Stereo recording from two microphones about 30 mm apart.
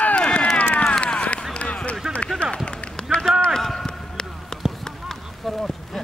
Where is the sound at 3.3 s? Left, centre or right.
Right.